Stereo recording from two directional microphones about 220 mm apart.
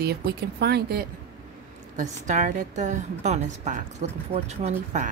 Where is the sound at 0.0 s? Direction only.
45° right (ahead or behind).